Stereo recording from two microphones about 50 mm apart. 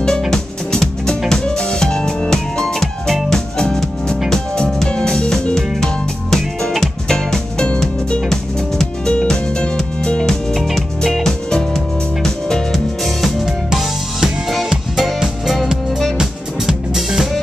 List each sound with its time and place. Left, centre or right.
0.3 s music: centre